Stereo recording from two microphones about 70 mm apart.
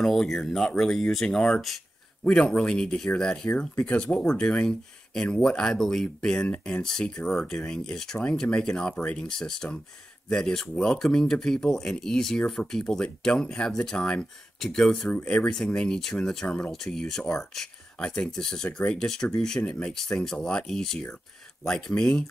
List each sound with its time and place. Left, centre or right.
0.0 s speech: centre
15.1 s speech: left